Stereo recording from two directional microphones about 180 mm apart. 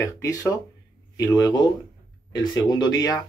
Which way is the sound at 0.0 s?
15° left (ahead or behind).